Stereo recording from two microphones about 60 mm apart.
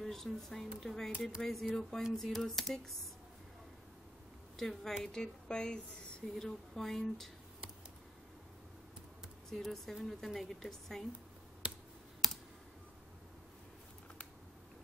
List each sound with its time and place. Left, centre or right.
0.0 s a woman's voice: centre
4.6 s a woman's voice: centre
9.5 s speech: centre
12.2 s computer keyboard: centre